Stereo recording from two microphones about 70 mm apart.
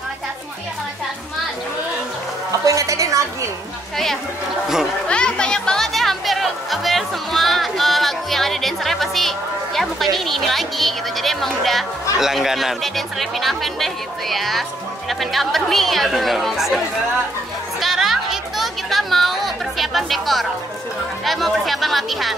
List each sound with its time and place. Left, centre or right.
2.6 s speech: right
5.0 s music: centre
9.8 s speech: centre
17.7 s chatter: centre
21.2 s speech: centre